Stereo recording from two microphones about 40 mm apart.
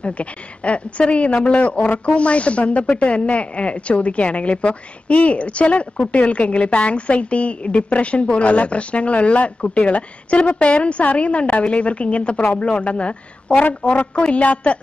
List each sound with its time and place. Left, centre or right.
0.0 s speech: left
14.1 s speech: left